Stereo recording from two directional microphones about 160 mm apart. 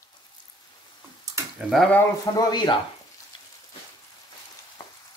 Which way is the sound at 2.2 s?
25° left (ahead or behind).